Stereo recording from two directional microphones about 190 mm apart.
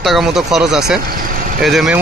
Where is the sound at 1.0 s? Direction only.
45° right (ahead or behind).